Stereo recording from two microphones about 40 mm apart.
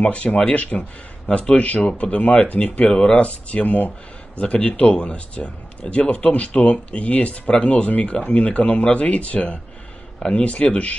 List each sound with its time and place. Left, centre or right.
0.0 s a man's voice: left